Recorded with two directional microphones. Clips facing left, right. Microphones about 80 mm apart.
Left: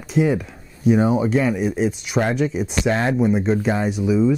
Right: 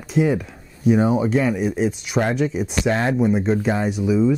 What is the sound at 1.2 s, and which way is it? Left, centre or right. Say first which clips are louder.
Speech: even; centre.